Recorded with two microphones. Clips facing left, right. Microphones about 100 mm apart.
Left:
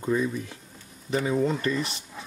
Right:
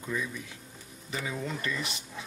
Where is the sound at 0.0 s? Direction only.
40° left (ahead or behind).